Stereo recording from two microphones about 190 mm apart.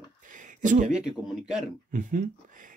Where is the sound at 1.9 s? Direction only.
45° right (ahead or behind).